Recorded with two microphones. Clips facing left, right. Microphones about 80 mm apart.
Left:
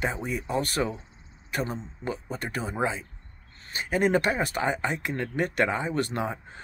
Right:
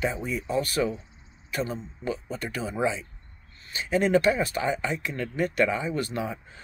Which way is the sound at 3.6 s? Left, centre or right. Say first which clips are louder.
Right 2 dB; left.